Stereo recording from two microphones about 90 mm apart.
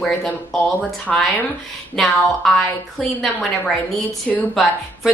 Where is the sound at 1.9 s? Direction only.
5° left (ahead or behind).